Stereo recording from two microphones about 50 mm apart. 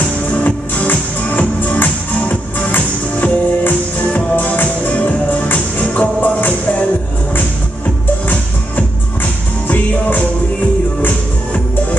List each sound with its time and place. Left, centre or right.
1.8 s music: left
8.3 s music: left